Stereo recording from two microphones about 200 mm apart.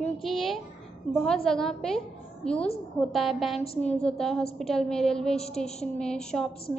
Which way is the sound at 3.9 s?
5° left (ahead or behind).